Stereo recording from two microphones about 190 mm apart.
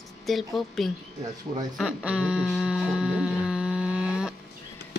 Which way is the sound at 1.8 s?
5° right (ahead or behind).